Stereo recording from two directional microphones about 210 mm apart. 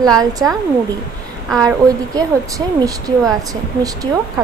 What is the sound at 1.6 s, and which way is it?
A woman's voice, 15° right (ahead or behind).